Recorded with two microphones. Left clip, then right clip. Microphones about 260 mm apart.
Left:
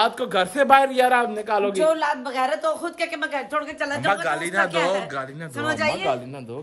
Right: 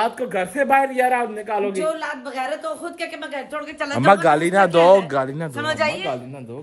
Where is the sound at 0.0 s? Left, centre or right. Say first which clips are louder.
Left 1 dB; centre.